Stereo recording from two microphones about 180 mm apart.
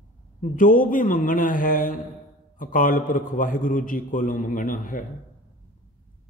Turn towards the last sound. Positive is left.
turn(degrees=50)  # may be behind; listen again after turning